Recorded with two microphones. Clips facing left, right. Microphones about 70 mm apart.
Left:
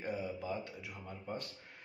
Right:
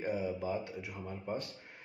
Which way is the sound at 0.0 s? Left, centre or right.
Right.